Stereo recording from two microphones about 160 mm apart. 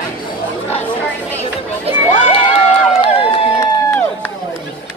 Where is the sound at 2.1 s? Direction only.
50° left (ahead or behind).